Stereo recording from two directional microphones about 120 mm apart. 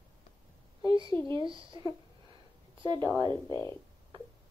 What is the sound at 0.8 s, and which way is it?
A woman's voice, 40° right (ahead or behind).